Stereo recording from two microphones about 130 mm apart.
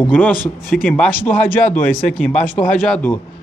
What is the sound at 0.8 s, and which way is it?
Speech, 10° left (ahead or behind).